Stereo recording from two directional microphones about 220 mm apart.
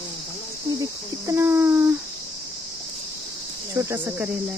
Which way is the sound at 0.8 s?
10° right (ahead or behind).